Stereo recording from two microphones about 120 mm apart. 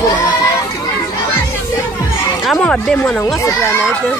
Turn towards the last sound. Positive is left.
turn(degrees=20)  # may be behind; listen again after turning